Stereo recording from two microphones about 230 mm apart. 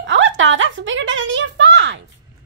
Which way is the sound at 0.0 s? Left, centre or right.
Right.